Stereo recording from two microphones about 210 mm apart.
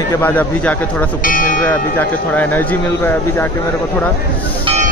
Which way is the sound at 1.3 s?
40° left (ahead or behind).